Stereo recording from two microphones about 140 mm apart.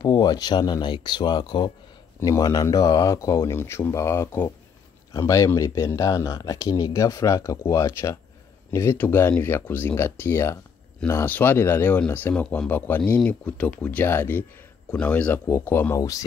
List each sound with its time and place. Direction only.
0.0 s speech: 30° left (ahead or behind)